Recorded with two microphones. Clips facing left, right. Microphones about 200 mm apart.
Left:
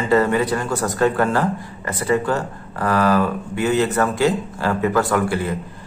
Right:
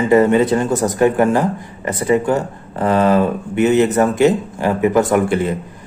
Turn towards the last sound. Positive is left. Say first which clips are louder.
# right 5 dB
turn(degrees=-20)  # may be behind; listen again after turning